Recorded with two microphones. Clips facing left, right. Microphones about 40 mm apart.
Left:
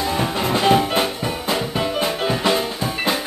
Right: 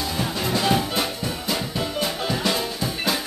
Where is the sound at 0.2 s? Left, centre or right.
Left.